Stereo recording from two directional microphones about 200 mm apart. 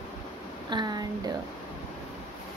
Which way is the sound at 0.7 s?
20° right (ahead or behind).